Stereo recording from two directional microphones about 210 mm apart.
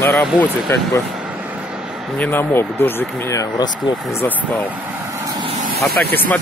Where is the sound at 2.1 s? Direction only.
10° left (ahead or behind).